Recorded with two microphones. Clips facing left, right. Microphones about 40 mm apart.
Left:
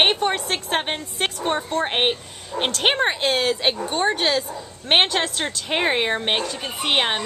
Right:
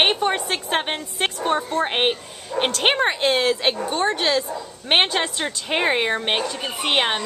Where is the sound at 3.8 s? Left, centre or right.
Centre.